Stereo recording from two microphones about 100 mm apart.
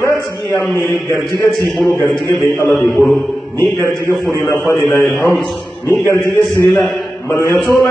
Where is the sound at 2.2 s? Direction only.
30° left (ahead or behind).